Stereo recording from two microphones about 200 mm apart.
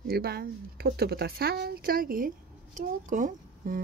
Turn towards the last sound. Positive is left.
turn(degrees=-40)  # may be behind; listen again after turning